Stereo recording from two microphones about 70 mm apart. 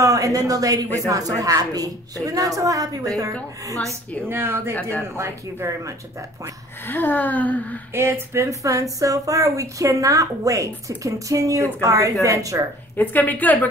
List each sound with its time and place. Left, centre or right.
0.0 s a woman's voice: right
4.3 s speech: right
6.9 s a woman's voice: left
7.9 s speech: right
12.9 s a woman's voice: left